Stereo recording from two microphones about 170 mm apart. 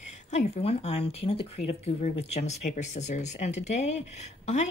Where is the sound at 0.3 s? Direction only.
40° left (ahead or behind).